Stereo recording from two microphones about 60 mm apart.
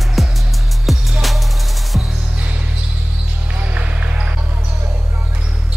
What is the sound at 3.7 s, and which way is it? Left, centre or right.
Basketball bounce, right.